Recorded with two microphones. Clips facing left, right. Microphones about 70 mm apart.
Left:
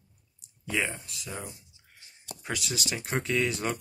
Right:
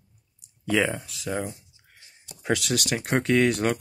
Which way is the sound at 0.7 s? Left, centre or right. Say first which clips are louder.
Right 7 dB; right.